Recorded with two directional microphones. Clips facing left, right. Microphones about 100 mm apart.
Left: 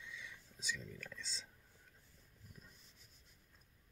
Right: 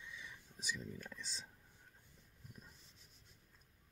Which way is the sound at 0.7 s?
20° right (ahead or behind).